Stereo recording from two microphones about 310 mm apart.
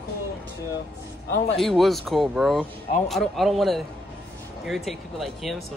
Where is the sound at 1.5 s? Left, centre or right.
Centre.